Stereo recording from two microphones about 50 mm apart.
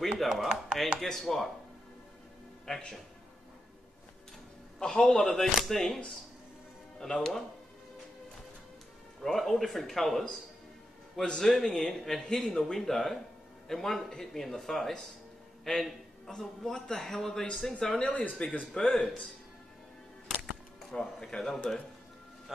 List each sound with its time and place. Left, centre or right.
0.2 s speech: centre
0.9 s speech: centre
2.7 s a man's voice: centre
4.7 s speech: centre
7.0 s speech: centre
9.2 s a man's voice: centre
20.8 s speech: centre